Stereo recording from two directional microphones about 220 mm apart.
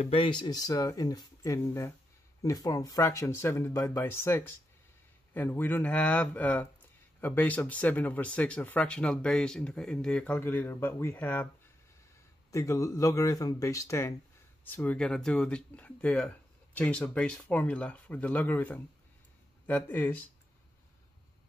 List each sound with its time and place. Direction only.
0.0 s speech: 25° left (ahead or behind); by 11.4 s 10° left (ahead or behind)
12.4 s speech: 15° left (ahead or behind)